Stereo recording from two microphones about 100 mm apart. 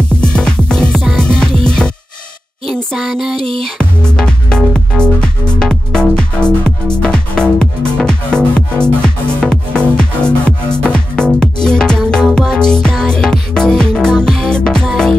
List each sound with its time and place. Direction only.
0.2 s music: 10° left (ahead or behind)
3.3 s music: 65° right (ahead or behind)
3.7 s music: 5° left (ahead or behind)